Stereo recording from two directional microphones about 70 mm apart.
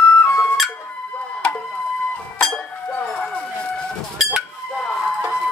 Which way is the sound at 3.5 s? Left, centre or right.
Centre.